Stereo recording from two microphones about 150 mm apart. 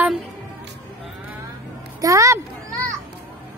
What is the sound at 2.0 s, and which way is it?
Speech, 20° right (ahead or behind).